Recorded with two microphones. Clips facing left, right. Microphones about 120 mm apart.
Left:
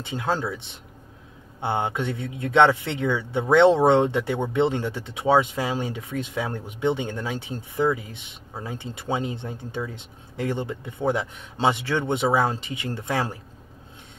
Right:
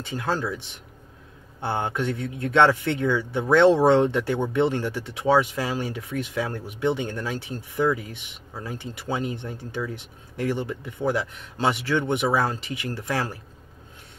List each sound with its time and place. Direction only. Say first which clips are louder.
0.0 s speech: left 1 dB; 20° left (ahead or behind)
1.6 s speech: left 1 dB; 15° left (ahead or behind)